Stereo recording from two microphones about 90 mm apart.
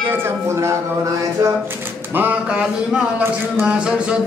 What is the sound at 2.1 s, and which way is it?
Speech, 15° right (ahead or behind).